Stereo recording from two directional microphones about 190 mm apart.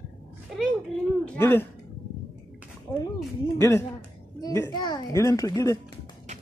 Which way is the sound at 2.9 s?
10° left (ahead or behind).